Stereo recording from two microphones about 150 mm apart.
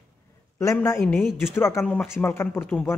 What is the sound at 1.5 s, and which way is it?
A man's voice, 20° left (ahead or behind).